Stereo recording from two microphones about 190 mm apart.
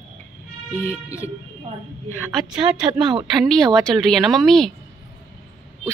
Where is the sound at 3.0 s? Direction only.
25° right (ahead or behind).